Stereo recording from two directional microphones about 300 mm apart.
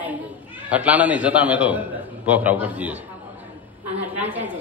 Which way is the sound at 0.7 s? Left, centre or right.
Centre.